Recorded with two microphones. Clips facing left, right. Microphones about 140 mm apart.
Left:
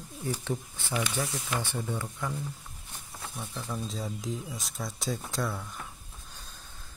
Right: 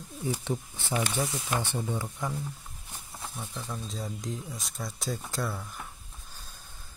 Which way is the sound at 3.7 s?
Centre (ahead or behind).